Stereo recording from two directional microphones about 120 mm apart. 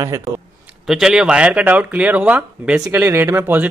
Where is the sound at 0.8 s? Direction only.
5° right (ahead or behind).